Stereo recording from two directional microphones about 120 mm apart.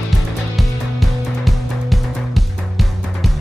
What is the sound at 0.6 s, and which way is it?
Music, centre (ahead or behind).